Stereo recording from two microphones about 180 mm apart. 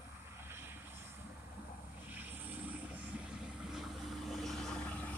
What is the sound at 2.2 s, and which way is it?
Boat, 10° right (ahead or behind).